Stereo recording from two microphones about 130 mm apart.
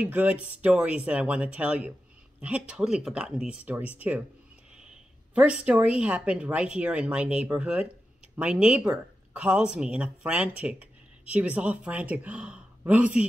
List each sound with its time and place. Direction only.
0.0 s speech: 10° right (ahead or behind)